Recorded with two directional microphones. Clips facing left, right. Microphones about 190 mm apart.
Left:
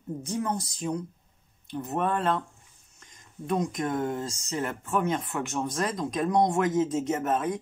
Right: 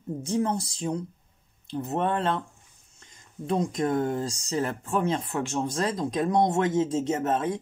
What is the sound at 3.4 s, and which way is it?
Speech, 30° right (ahead or behind).